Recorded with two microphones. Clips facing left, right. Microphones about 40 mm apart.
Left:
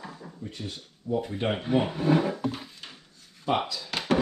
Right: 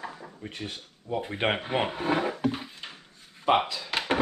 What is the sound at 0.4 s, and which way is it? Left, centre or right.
Speech, right.